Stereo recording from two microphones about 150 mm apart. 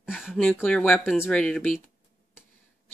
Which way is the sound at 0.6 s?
10° left (ahead or behind).